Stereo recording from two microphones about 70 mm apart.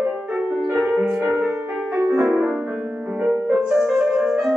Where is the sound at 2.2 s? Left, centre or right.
Centre.